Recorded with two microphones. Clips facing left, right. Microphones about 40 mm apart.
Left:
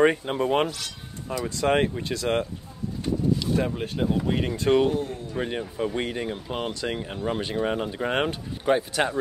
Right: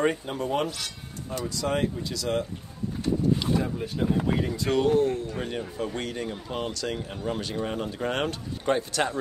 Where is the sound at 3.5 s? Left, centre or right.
Left.